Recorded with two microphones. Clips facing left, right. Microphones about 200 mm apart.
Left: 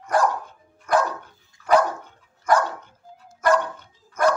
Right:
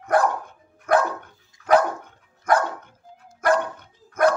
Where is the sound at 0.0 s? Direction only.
60° right (ahead or behind).